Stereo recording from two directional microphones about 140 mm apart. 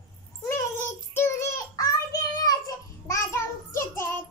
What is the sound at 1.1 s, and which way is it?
Child singing, 20° left (ahead or behind).